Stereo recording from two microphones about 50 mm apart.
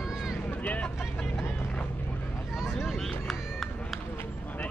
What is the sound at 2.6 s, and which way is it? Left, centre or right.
Speech, centre.